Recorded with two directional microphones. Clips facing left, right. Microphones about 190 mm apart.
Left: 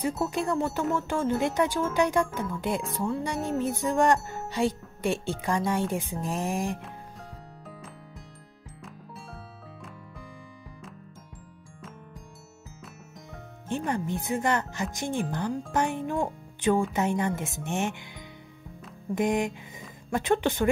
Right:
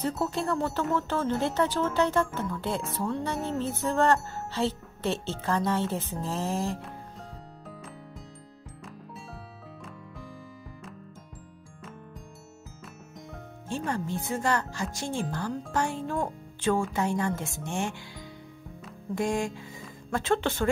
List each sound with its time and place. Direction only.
0.2 s speech: 15° left (ahead or behind)
13.7 s speech: 20° left (ahead or behind)
19.1 s speech: 20° left (ahead or behind)